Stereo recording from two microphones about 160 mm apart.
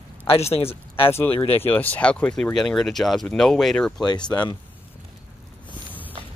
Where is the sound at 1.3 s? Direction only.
35° left (ahead or behind).